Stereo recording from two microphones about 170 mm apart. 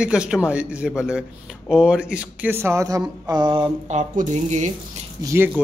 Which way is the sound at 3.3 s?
25° right (ahead or behind).